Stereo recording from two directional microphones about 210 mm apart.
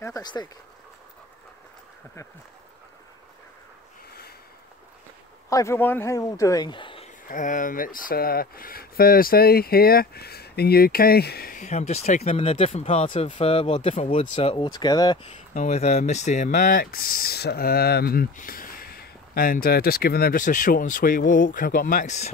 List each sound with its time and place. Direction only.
0.0 s speech: 15° left (ahead or behind)
5.5 s speech: 15° left (ahead or behind)
7.2 s speech: 40° left (ahead or behind); by 15.1 s 20° left (ahead or behind)
15.2 s speech: 35° left (ahead or behind)